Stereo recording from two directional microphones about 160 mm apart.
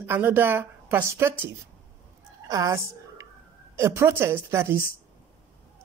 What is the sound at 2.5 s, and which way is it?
A woman's voice, 20° right (ahead or behind).